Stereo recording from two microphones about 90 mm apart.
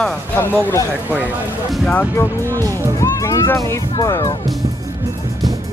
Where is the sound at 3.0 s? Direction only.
35° left (ahead or behind).